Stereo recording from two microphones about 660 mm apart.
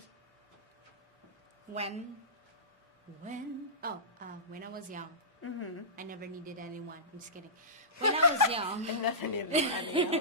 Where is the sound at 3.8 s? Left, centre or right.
Centre.